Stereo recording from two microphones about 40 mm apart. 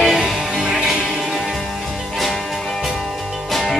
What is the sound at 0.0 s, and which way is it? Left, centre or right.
Music, centre.